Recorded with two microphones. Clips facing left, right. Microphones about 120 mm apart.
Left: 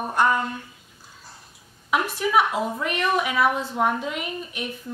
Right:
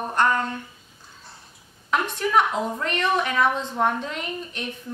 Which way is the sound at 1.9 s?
5° left (ahead or behind).